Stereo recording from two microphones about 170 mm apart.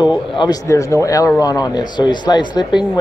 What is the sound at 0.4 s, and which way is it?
Speech, 20° left (ahead or behind).